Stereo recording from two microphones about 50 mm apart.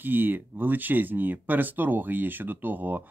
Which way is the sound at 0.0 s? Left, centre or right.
Right.